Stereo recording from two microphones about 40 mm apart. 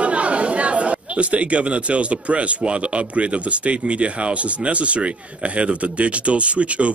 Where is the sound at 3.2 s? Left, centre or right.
Right.